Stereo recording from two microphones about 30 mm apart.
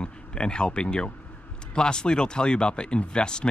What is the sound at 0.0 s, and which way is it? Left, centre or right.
Speech, left.